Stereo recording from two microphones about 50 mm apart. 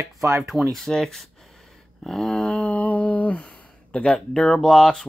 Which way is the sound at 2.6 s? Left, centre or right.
Left.